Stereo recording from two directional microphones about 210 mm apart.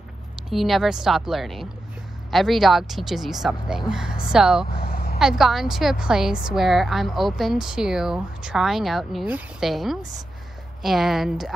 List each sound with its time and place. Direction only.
0.5 s a woman's voice: centre (ahead or behind)
4.7 s vehicle: 45° left (ahead or behind)
5.2 s a woman's voice: centre (ahead or behind)